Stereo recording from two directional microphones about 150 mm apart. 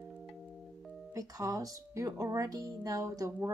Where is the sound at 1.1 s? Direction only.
25° right (ahead or behind).